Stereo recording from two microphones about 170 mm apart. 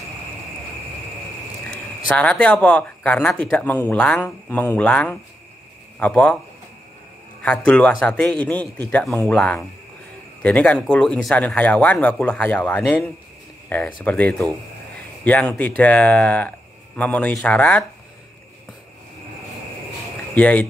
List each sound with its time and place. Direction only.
2.0 s speech: 5° left (ahead or behind)
7.4 s speech: 10° left (ahead or behind)
20.3 s speech: 10° left (ahead or behind)